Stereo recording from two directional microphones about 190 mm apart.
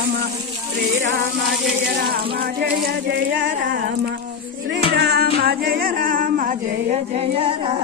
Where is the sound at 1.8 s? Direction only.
60° right (ahead or behind).